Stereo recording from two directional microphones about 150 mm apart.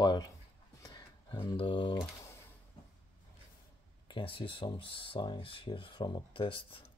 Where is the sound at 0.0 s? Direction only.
30° left (ahead or behind).